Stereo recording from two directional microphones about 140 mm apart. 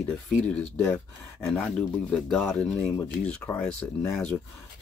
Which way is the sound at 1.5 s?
5° left (ahead or behind).